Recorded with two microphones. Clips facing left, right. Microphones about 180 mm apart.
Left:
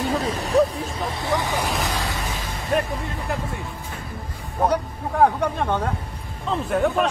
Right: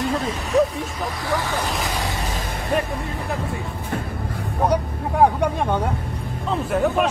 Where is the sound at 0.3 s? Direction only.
35° left (ahead or behind).